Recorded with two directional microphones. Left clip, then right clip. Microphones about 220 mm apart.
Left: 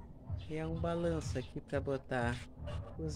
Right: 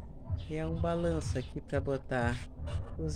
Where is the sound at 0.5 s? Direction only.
Centre (ahead or behind).